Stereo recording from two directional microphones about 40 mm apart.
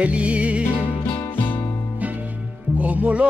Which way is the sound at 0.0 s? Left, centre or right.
Right.